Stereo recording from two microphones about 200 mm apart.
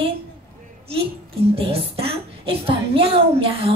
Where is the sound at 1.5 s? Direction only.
30° right (ahead or behind).